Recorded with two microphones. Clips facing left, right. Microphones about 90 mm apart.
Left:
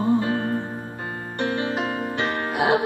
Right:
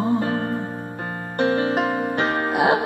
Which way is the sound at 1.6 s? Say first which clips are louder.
Right 4 dB; 50° right (ahead or behind).